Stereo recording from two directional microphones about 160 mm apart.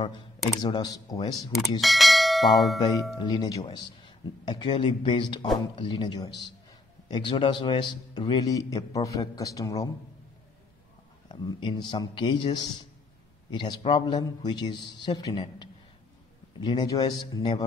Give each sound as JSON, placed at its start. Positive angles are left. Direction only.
{"t": 0.6, "sound": "a man's voice", "side_deg": 25}
{"t": 1.8, "sound": "bell", "side_deg": 0}
{"t": 3.2, "sound": "a man's voice", "side_deg": 25}
{"t": 11.2, "sound": "a man's voice", "side_deg": 30}